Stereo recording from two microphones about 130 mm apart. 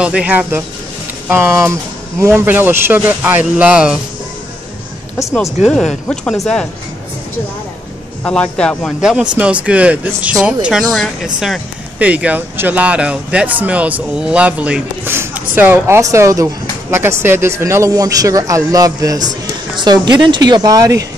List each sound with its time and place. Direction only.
0.0 s speech: 10° right (ahead or behind)
5.7 s speech: 5° left (ahead or behind)
8.2 s a man's voice: 10° left (ahead or behind)
9.0 s speech: 5° right (ahead or behind); by 19.2 s 30° right (ahead or behind)
19.4 s a sound: 30° right (ahead or behind)
20.2 s speech: 35° right (ahead or behind)